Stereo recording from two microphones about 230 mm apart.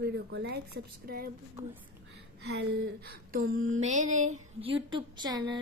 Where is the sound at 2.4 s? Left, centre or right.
Right.